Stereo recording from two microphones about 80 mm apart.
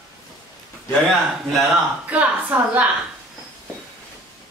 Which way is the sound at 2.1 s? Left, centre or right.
Centre.